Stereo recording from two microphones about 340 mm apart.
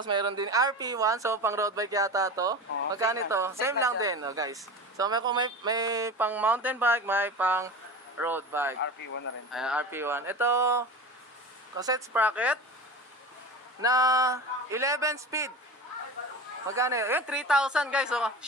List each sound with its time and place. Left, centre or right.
0.0 s speech: centre
8.8 s speech: left
9.5 s speech: centre
13.7 s speech: centre
16.6 s speech: centre